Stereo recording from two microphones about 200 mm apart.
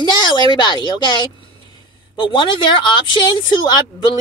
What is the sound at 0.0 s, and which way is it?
Speech, 20° left (ahead or behind).